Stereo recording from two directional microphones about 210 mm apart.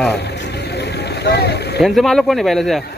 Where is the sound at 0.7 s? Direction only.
50° left (ahead or behind).